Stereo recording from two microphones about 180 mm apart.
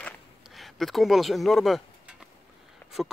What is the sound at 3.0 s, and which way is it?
Speech, 5° right (ahead or behind).